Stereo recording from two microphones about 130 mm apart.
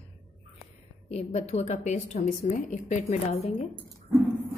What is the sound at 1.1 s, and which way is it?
A woman's voice, 55° left (ahead or behind).